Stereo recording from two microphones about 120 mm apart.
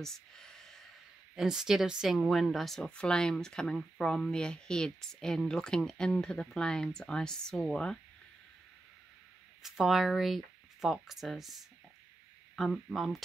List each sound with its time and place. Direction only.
0.0 s a sound: 5° left (ahead or behind)
1.3 s speech: 5° right (ahead or behind)
9.6 s speech: 5° right (ahead or behind)